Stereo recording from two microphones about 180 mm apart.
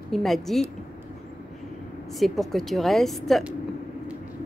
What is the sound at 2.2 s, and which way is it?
A woman's voice, centre (ahead or behind).